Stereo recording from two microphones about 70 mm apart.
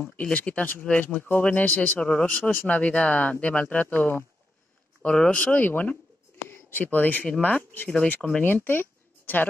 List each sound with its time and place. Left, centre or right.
0.0 s speech: centre
5.0 s speech: centre